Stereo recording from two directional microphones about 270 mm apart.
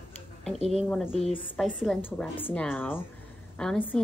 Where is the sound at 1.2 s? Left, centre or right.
Left.